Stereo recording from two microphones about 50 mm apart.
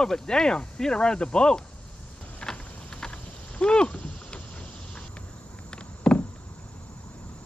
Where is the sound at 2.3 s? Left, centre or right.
Centre.